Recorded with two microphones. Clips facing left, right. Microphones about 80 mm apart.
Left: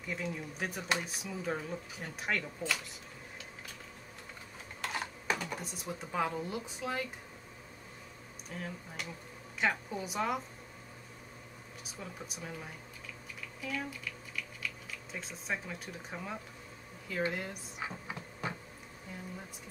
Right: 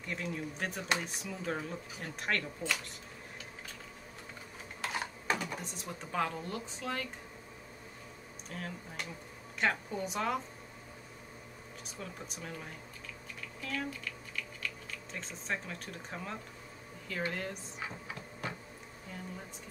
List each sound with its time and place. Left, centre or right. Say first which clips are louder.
0.0 s speech: even; centre
5.4 s speech: even; centre
8.5 s speech: even; centre
11.8 s speech: even; centre
17.8 s a sound: left 2 dB; left